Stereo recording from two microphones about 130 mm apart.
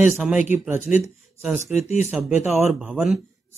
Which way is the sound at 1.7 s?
60° left (ahead or behind).